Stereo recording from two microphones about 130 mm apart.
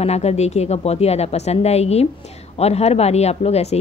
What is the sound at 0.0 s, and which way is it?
A woman's voice, 55° left (ahead or behind).